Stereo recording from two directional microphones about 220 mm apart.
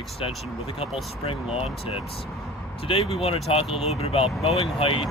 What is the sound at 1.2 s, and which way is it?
Speech, 25° left (ahead or behind).